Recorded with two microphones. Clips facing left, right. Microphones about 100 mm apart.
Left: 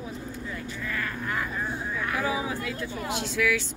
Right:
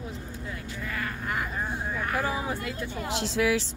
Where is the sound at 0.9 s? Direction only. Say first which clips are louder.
Left 1 dB; 25° right (ahead or behind).